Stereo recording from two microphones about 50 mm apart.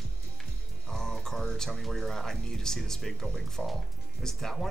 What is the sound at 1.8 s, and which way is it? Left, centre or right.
Speech, centre.